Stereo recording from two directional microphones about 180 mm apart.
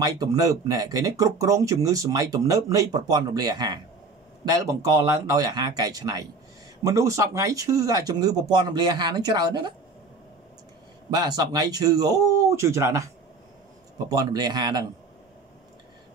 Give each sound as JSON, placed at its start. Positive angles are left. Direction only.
{"t": 0.0, "sound": "speech", "side_deg": -20}
{"t": 11.1, "sound": "speech", "side_deg": -20}